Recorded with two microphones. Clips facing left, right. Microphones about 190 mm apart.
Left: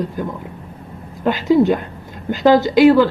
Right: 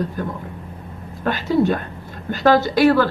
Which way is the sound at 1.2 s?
15° left (ahead or behind).